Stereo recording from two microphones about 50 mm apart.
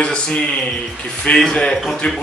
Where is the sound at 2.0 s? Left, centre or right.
Left.